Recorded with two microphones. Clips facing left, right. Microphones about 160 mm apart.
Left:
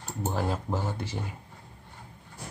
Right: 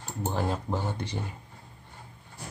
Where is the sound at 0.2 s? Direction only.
5° left (ahead or behind).